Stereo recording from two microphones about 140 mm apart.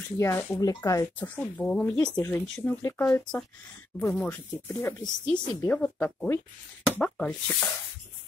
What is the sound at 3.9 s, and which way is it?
Speech, 20° left (ahead or behind).